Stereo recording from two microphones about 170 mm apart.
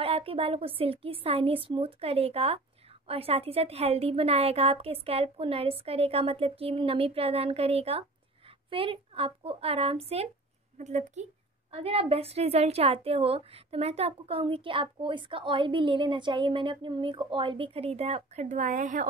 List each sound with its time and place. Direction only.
0.0 s a woman's voice: 35° right (ahead or behind); by 19.0 s 50° right (ahead or behind)